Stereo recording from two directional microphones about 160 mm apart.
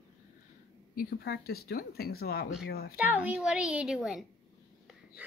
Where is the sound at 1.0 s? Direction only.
70° left (ahead or behind).